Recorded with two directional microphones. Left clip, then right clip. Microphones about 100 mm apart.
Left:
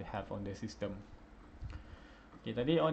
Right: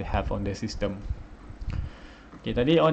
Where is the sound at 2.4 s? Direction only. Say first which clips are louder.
Right 10 dB; 15° right (ahead or behind).